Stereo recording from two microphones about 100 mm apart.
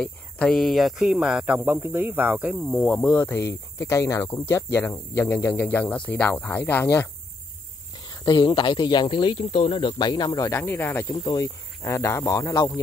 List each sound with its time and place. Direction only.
0.0 s speech: 5° left (ahead or behind)
1.1 s speech: 15° right (ahead or behind)
2.8 s speech: 5° left (ahead or behind)
3.1 s speech: 20° left (ahead or behind)
8.1 s a man's voice: 45° left (ahead or behind)
10.5 s speech: 25° left (ahead or behind)
11.1 s speech: 35° left (ahead or behind)